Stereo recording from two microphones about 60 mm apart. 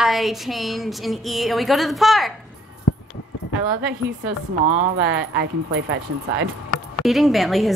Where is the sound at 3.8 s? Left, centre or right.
Centre.